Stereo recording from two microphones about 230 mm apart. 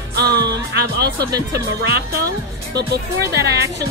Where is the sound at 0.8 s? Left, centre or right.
Right.